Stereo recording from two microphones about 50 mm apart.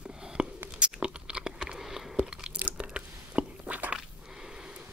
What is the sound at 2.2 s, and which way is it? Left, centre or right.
Crunch, centre.